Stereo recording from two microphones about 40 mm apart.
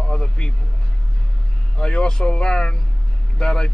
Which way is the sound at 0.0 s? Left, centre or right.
Left.